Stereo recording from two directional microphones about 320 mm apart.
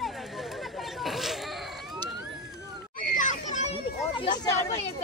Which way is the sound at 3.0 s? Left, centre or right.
Left.